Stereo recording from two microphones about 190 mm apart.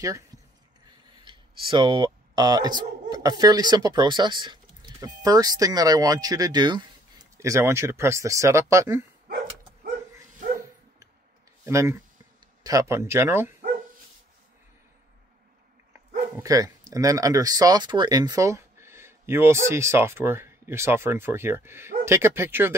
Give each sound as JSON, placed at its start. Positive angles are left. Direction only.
{"t": 0.0, "sound": "speech", "side_deg": -15}
{"t": 11.6, "sound": "speech", "side_deg": -15}
{"t": 16.3, "sound": "speech", "side_deg": -15}